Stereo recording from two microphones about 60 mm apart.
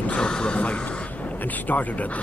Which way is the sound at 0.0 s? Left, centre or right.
Centre.